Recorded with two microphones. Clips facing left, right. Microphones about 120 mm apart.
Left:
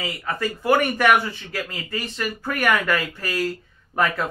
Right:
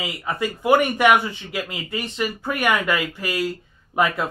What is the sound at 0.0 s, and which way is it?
Speech, 15° right (ahead or behind).